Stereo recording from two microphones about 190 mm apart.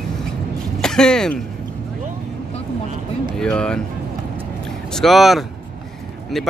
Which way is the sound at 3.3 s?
5° left (ahead or behind).